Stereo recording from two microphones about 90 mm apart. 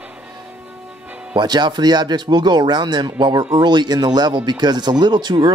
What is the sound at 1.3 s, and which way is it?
Speech, 55° right (ahead or behind).